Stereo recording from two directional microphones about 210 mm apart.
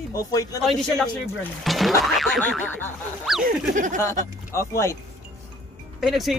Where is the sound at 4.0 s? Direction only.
15° left (ahead or behind).